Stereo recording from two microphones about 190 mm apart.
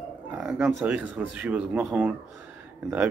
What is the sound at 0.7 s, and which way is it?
Speech, 10° right (ahead or behind).